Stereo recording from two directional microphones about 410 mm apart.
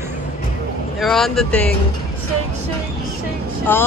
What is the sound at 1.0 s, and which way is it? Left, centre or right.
Speech, centre.